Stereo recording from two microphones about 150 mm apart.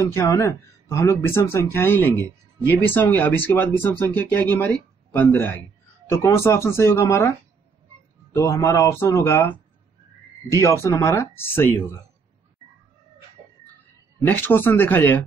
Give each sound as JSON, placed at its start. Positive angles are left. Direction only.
{"t": 0.0, "sound": "speech", "side_deg": 20}
{"t": 10.6, "sound": "speech", "side_deg": 20}
{"t": 14.2, "sound": "speech", "side_deg": 15}